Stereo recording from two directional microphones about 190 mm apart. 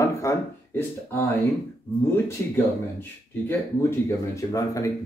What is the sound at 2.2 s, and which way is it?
Speech, 10° left (ahead or behind).